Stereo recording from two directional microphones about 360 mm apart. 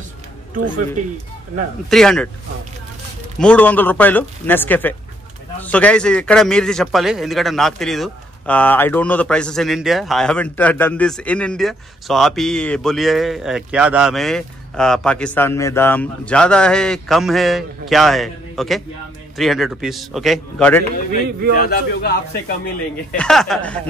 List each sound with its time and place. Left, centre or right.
1.9 s a man's voice: centre
3.3 s a man's voice: centre
21.5 s a man's voice: left
23.1 s a man's voice: centre